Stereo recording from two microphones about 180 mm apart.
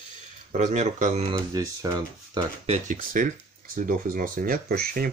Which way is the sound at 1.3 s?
20° right (ahead or behind).